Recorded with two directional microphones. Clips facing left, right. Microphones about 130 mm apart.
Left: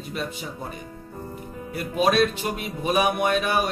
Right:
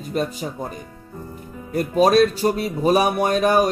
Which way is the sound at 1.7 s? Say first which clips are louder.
Right 6 dB; 40° right (ahead or behind).